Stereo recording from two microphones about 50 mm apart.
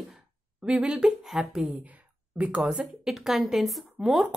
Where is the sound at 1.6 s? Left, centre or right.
Right.